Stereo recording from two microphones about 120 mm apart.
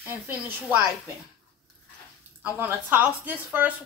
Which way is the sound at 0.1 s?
15° right (ahead or behind).